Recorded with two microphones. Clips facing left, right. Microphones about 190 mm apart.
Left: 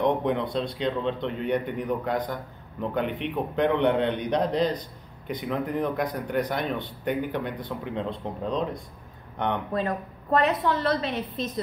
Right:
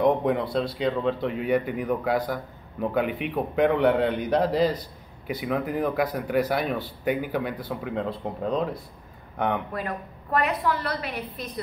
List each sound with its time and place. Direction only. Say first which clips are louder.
0.0 s speech: right 2 dB; 5° right (ahead or behind)
9.7 s a woman's voice: left 4 dB; 25° left (ahead or behind)